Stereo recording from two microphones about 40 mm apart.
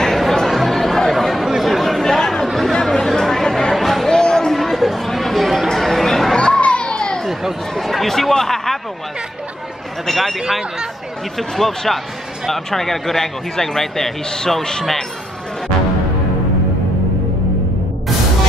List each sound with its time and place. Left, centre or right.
0.0 s chatter: centre
2.1 s chatter: centre
2.4 s chatter: centre
2.7 s chatter: centre
4.1 s a sound: centre
4.6 s chatter: centre
5.7 s a sound: centre
6.3 s children playing: left
7.7 s chatter: centre
10.0 s a sound: centre
11.3 s a man's voice: centre